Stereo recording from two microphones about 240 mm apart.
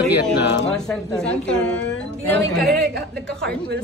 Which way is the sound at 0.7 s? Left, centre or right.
Centre.